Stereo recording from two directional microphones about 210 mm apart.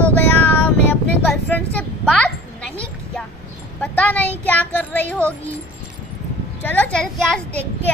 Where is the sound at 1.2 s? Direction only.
5° left (ahead or behind).